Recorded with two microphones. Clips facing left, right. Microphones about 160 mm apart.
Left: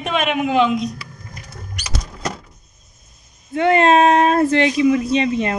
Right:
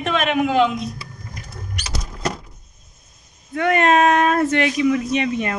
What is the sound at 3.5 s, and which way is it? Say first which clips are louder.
Speech: left 3 dB; 25° left (ahead or behind).